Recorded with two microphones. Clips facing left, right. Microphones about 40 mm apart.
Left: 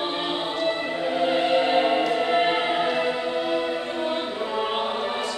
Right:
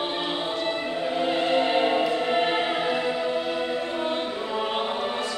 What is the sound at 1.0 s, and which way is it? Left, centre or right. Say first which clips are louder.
Music: left 3 dB; centre.